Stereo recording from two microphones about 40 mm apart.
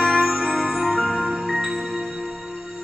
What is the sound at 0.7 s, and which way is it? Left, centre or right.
Music, centre.